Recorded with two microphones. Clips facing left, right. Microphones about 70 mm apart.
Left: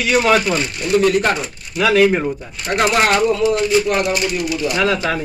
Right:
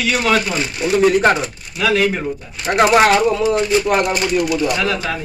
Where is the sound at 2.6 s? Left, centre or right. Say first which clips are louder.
Right 4 dB; centre.